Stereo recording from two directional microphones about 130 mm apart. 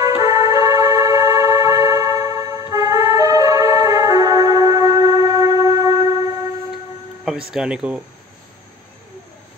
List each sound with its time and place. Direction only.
0.0 s music: 25° right (ahead or behind)
7.2 s speech: 5° right (ahead or behind)